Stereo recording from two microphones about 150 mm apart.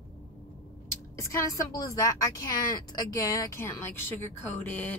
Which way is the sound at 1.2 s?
25° left (ahead or behind).